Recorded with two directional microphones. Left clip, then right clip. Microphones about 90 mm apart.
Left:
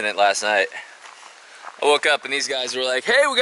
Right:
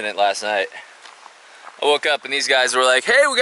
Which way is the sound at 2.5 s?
40° right (ahead or behind).